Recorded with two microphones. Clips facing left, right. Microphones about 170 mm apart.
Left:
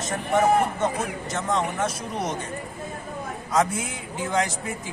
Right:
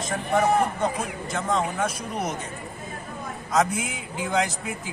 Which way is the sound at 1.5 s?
10° right (ahead or behind).